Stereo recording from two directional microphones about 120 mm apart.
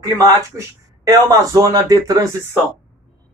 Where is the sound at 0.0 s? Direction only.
30° right (ahead or behind).